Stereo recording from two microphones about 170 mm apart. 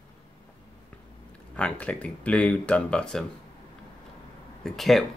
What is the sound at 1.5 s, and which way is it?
Speech, 5° left (ahead or behind).